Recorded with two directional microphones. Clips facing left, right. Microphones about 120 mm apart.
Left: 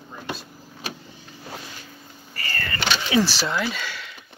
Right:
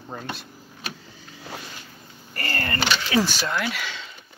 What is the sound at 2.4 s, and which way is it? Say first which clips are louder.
Vehicle: right 3 dB; 55° right (ahead or behind).